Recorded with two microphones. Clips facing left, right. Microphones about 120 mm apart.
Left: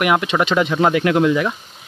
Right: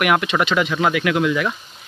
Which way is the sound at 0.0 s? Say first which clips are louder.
Left 1 dB; 25° left (ahead or behind).